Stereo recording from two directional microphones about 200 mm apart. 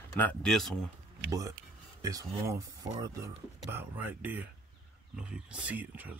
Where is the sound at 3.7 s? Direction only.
10° right (ahead or behind).